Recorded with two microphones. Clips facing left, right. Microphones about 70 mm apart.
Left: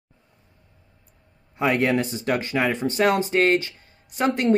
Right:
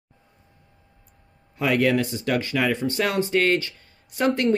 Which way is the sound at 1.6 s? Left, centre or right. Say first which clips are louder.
Even; left.